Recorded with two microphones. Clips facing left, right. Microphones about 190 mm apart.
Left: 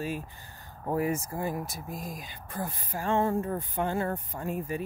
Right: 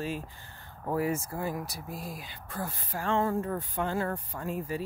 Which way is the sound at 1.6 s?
45° left (ahead or behind).